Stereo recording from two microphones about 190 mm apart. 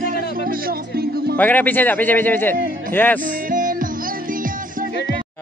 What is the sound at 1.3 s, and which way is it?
Speech, 10° left (ahead or behind).